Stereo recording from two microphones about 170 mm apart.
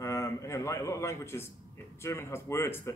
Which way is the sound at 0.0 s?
15° left (ahead or behind).